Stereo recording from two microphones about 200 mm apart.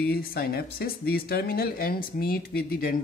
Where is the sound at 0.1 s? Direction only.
50° left (ahead or behind).